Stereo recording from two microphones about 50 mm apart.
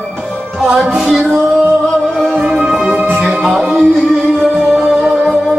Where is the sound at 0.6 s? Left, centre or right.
Centre.